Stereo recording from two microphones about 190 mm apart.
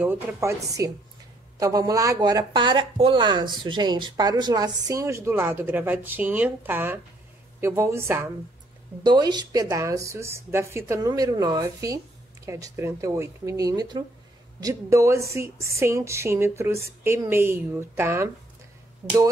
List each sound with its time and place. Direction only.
0.0 s a woman's voice: 10° right (ahead or behind)